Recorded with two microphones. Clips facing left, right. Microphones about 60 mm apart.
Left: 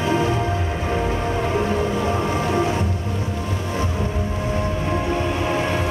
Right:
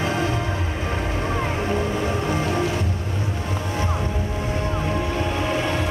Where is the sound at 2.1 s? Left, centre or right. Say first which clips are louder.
Left 2 dB; left.